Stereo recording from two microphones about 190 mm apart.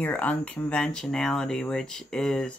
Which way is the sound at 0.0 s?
10° left (ahead or behind).